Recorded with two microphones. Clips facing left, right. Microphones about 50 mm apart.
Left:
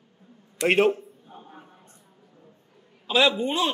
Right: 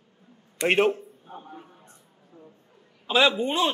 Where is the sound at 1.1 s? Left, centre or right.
Right.